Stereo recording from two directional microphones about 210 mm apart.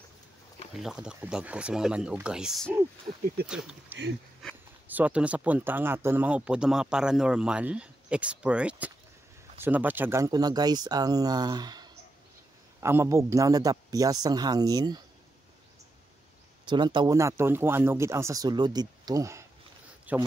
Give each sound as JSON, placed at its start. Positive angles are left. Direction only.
{"t": 0.7, "sound": "speech", "side_deg": -5}
{"t": 16.6, "sound": "speech", "side_deg": -20}